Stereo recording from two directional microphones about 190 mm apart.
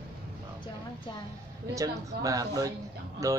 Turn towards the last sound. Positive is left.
turn(degrees=-15)  # may be behind; listen again after turning